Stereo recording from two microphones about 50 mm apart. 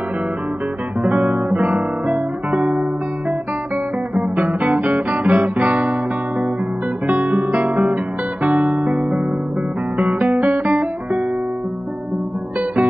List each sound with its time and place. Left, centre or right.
1.0 s guitar: right
4.1 s guitar: right
7.1 s guitar: right